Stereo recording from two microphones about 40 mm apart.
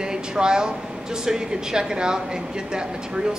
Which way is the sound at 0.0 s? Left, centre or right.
Centre.